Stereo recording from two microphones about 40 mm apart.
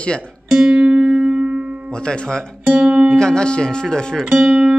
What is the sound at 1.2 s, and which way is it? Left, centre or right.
Music, right.